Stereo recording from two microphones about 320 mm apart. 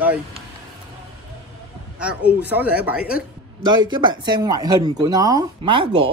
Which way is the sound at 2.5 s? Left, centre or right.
Centre.